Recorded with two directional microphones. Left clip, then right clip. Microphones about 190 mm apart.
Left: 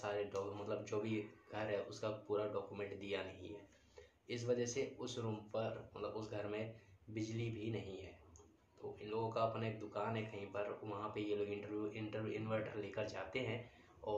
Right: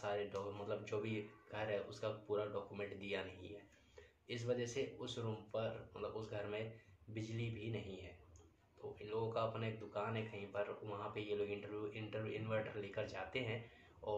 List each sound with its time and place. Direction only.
0.0 s speech: 5° left (ahead or behind)